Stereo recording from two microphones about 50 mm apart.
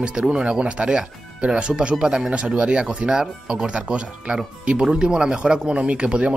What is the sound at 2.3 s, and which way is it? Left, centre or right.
Speech, right.